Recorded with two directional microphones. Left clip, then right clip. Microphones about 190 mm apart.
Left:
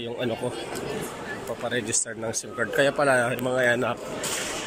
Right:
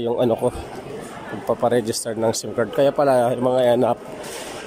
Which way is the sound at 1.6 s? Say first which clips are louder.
Right 7 dB; 30° right (ahead or behind).